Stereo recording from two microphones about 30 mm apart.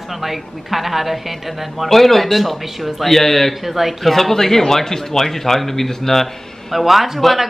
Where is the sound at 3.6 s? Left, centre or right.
Centre.